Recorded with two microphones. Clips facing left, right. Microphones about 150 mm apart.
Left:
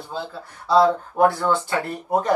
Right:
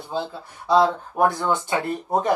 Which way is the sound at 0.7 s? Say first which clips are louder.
Left 1 dB; 20° right (ahead or behind).